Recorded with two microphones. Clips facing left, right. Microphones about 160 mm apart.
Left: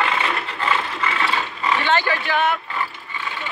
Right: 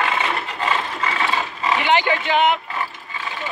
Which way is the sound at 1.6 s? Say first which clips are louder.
Right 2 dB; 15° right (ahead or behind).